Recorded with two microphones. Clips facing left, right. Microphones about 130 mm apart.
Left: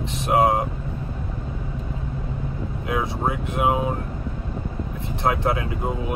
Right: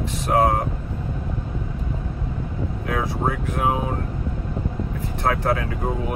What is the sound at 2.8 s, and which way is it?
Speech, 20° left (ahead or behind).